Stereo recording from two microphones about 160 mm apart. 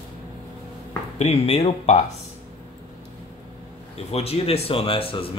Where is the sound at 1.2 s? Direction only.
40° left (ahead or behind).